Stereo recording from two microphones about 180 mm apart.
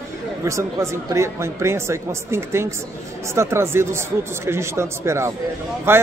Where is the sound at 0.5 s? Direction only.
15° right (ahead or behind).